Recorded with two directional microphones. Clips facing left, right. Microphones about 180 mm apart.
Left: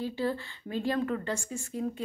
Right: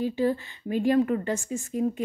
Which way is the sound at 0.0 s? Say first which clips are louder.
Right 6 dB; 15° right (ahead or behind).